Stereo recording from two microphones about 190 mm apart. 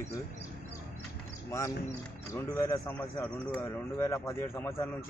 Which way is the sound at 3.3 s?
20° left (ahead or behind).